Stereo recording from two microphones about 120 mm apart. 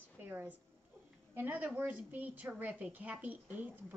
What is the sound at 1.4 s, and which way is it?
A woman's voice, 15° right (ahead or behind).